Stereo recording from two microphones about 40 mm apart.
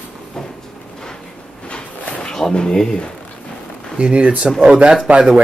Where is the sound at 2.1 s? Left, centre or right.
Centre.